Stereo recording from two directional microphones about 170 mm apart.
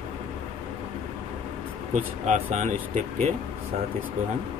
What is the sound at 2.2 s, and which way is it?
Speech, 45° right (ahead or behind).